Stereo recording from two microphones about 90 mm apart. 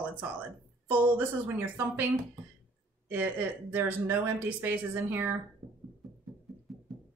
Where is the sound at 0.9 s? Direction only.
25° right (ahead or behind).